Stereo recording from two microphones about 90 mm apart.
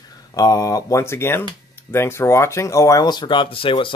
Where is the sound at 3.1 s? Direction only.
55° left (ahead or behind); by 3.9 s 70° left (ahead or behind).